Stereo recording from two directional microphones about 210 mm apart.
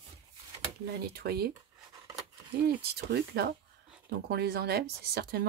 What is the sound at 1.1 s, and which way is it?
Speech, 50° right (ahead or behind).